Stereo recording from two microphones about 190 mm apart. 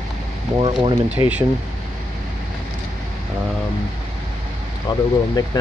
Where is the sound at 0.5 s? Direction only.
25° right (ahead or behind).